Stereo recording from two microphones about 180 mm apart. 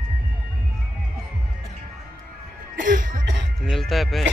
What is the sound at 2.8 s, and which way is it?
Music, 50° right (ahead or behind).